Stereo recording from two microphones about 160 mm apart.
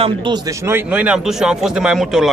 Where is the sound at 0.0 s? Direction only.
30° right (ahead or behind).